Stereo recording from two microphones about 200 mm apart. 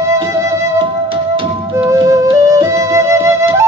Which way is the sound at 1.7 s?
15° right (ahead or behind).